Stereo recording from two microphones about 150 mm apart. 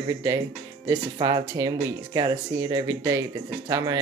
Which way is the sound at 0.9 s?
30° right (ahead or behind).